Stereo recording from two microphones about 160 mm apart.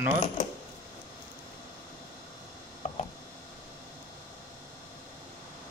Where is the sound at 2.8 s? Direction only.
45° left (ahead or behind).